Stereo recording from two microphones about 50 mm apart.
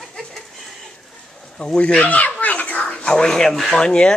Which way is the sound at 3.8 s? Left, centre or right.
Centre.